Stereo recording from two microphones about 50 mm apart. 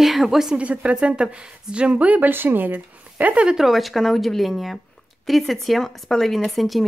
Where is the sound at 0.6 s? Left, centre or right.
Right.